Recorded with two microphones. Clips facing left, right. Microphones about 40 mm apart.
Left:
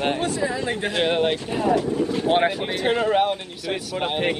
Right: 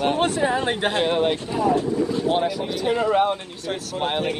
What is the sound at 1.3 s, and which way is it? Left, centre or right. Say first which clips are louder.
A man's voice: even; left.